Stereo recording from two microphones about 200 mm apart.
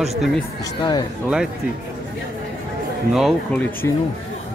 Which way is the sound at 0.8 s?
20° left (ahead or behind).